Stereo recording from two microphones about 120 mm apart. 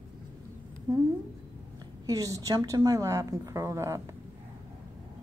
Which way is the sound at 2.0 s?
30° right (ahead or behind).